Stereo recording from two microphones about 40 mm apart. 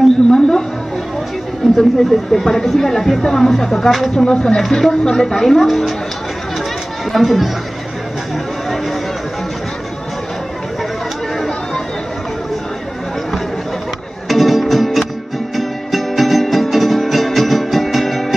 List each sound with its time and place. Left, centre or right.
0.3 s a sound: centre
1.8 s speech: centre
4.1 s speech: centre
4.6 s speech: centre
7.1 s speech: centre
8.6 s chatter: centre
11.3 s a sound: centre
14.3 s music: centre